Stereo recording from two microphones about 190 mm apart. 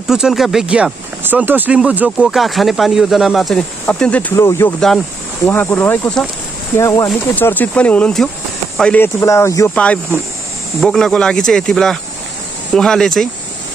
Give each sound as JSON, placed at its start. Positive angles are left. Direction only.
{"t": 0.1, "sound": "speech", "side_deg": 0}
{"t": 10.8, "sound": "speech", "side_deg": 0}